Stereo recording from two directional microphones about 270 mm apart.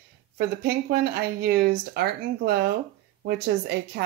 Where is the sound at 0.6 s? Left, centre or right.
Right.